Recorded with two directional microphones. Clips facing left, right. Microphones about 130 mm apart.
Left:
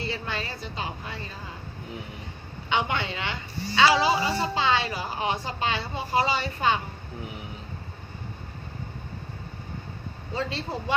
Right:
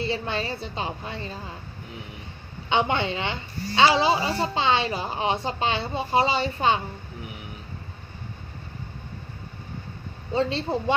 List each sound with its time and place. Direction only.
0.0 s a woman's voice: 25° right (ahead or behind)
2.7 s a woman's voice: 25° right (ahead or behind)
10.3 s a woman's voice: 25° right (ahead or behind)